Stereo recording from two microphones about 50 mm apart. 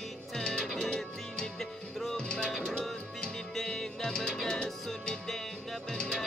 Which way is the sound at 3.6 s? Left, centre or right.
Centre.